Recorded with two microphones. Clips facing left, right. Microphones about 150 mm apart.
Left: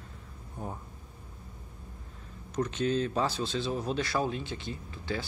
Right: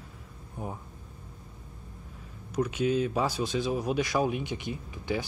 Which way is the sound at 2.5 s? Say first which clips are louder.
Right 2 dB; 10° right (ahead or behind).